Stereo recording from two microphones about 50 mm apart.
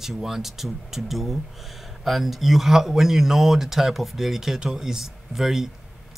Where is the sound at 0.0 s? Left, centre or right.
Centre.